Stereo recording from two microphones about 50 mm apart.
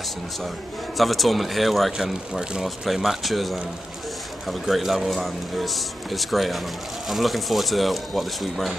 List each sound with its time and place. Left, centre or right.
0.9 s speech: centre